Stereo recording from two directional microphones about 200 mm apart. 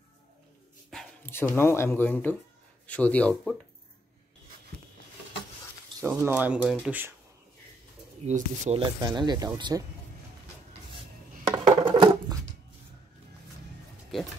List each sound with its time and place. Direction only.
0.8 s a man's voice: 5° left (ahead or behind)
5.9 s speech: 15° right (ahead or behind)
8.3 s speech: 35° right (ahead or behind); by 9.8 s 20° right (ahead or behind)
11.4 s a sound: 20° right (ahead or behind)